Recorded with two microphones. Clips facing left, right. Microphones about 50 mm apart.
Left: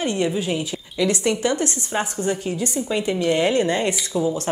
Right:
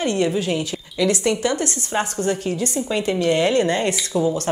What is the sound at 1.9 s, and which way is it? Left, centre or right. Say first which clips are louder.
A woman's voice: right 4 dB; centre.